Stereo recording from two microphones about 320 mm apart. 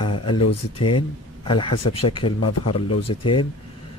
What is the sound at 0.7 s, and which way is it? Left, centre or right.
Speech, centre.